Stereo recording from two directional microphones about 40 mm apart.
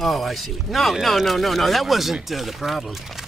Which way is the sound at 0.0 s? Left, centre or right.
Centre.